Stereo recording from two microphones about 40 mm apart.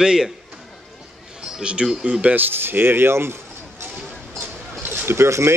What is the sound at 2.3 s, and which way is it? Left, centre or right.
Speech, right.